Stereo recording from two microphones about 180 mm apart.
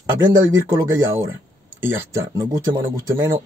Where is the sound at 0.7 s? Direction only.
15° right (ahead or behind).